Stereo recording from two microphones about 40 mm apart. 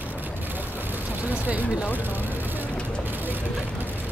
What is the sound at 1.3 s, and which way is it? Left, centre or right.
Vehicle, right.